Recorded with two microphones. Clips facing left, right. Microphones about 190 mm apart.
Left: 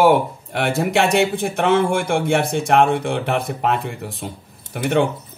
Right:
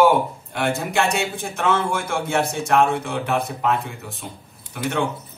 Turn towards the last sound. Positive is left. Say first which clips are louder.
# left 6 dB
turn(degrees=60)  # may be behind; listen again after turning